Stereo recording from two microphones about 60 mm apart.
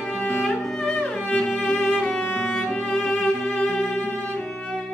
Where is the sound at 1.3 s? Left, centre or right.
Centre.